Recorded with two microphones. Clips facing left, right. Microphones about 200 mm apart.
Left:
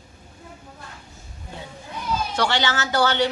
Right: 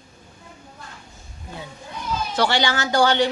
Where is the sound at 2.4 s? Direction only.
10° right (ahead or behind).